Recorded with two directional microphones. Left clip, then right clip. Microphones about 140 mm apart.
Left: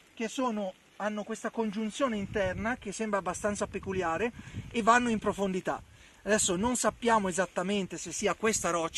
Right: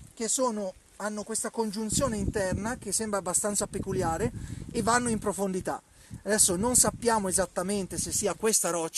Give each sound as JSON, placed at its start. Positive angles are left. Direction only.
{"t": 0.2, "sound": "speech", "side_deg": -45}